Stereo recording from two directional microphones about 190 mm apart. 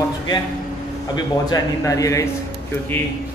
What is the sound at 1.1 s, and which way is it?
A man's voice, 20° left (ahead or behind).